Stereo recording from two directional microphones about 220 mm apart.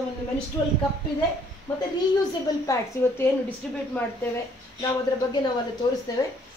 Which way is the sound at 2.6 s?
15° left (ahead or behind).